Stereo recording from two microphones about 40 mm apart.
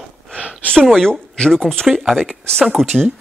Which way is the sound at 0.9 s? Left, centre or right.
Centre.